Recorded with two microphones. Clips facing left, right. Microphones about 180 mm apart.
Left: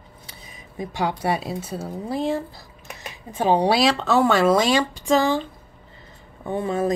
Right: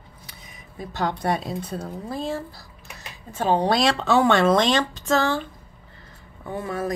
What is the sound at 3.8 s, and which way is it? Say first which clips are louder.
Speech: left 1 dB; centre (ahead or behind).